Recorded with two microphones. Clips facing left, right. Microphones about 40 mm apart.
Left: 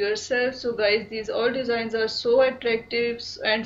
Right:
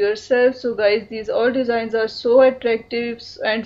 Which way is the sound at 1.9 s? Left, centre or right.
Right.